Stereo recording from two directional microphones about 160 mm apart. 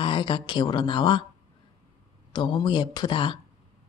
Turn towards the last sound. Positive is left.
turn(degrees=30)  # may be behind; listen again after turning